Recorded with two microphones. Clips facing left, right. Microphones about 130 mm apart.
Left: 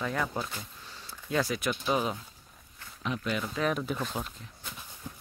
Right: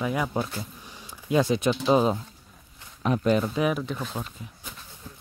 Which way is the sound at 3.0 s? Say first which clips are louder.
Right 10 dB; 45° right (ahead or behind).